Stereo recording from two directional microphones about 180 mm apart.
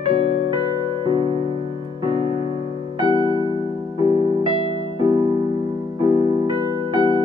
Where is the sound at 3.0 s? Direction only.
25° right (ahead or behind).